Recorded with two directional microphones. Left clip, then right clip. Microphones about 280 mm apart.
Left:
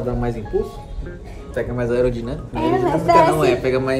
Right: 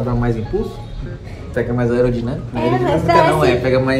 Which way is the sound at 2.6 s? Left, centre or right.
Centre.